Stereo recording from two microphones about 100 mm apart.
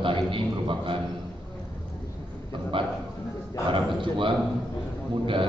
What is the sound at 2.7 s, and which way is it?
A man's voice, 60° right (ahead or behind).